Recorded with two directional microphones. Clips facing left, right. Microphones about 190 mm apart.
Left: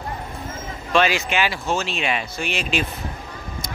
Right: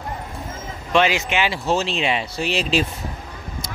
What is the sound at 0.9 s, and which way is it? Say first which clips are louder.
Speech: right 1 dB; 20° right (ahead or behind).